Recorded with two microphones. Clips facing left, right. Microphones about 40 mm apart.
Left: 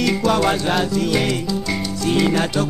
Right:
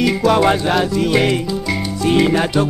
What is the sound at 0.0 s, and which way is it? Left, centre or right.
Music, centre.